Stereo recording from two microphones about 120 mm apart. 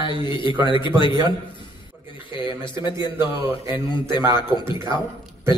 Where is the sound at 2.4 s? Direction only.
40° left (ahead or behind).